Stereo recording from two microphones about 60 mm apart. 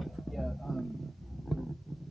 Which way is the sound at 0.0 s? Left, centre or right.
Centre.